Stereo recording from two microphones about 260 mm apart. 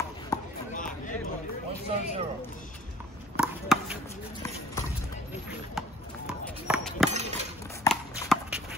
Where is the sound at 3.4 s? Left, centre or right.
Centre.